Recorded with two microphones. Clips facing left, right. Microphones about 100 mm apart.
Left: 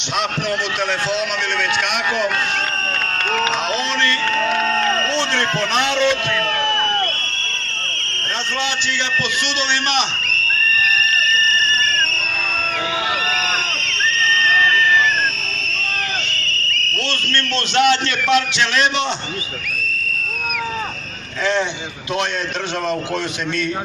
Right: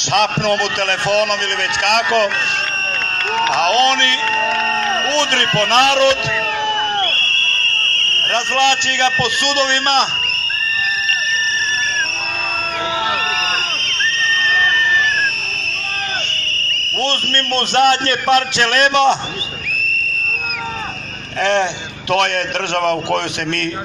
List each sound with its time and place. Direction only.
0.1 s a man's voice: 65° right (ahead or behind)
3.5 s speech: 90° right
4.3 s speech: centre (ahead or behind)
5.1 s speech: 80° right
7.7 s a sound: 20° left (ahead or behind)
8.5 s a man's voice: 65° right (ahead or behind)
9.6 s a man's voice: 50° right (ahead or behind)
10.9 s sonar: 5° right (ahead or behind)
13.3 s a sound: 5° right (ahead or behind)
16.9 s a man's voice: 45° right (ahead or behind)